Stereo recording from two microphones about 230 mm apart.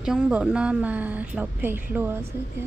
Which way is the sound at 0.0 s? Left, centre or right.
Centre.